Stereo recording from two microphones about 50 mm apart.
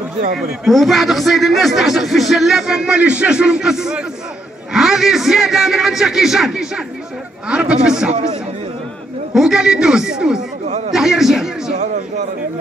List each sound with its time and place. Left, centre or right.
0.4 s a man's voice: centre
9.3 s a man's voice: centre
10.9 s a sound: centre